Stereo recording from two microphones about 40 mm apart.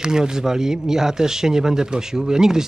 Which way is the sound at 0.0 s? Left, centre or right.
Centre.